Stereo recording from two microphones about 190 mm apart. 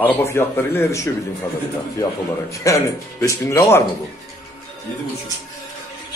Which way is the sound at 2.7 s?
15° left (ahead or behind).